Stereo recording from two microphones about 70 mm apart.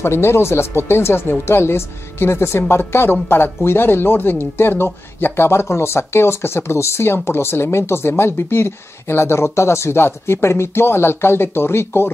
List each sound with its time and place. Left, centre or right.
0.0 s speech: left